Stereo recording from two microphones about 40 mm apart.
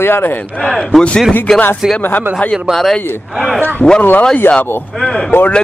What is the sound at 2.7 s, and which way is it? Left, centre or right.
Speech, centre.